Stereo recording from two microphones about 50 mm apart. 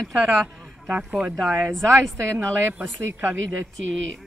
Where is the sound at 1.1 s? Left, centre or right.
Centre.